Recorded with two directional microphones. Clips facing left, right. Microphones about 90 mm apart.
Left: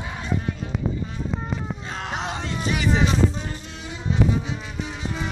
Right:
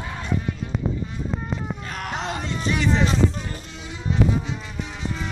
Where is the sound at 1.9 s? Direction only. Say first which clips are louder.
Left 1 dB; 20° left (ahead or behind).